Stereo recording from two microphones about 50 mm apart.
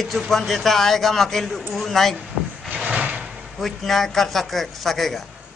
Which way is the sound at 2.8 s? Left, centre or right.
Right.